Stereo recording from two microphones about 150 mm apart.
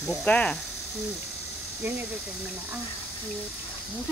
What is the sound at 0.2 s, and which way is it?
Speech, 10° left (ahead or behind).